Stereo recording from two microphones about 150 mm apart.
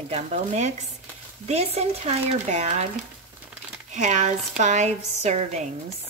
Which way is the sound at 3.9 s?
55° right (ahead or behind).